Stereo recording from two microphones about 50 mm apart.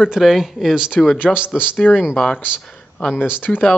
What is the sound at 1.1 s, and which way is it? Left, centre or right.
Speech, left.